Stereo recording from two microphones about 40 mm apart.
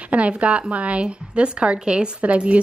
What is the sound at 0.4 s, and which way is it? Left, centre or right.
A woman's voice, right.